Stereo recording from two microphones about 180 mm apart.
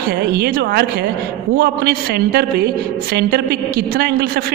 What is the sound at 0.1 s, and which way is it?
A woman's voice, 60° right (ahead or behind).